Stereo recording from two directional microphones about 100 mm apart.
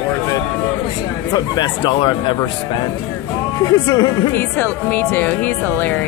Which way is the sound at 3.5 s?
35° left (ahead or behind).